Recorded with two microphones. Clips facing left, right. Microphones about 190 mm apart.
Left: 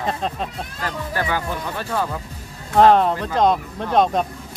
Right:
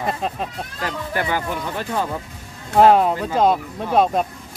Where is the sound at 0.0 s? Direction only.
5° right (ahead or behind).